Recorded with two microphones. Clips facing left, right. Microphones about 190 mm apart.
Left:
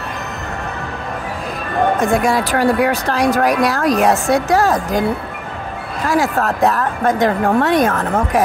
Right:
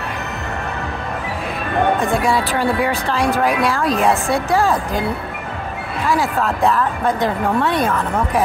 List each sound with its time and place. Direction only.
2.1 s a woman's voice: 45° left (ahead or behind)
6.0 s a woman's voice: 45° left (ahead or behind)